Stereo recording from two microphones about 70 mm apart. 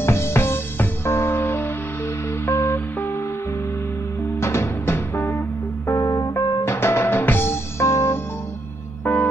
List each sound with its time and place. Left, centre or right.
0.0 s music: left
4.4 s music: left
5.9 s music: left
6.6 s music: left
9.0 s music: left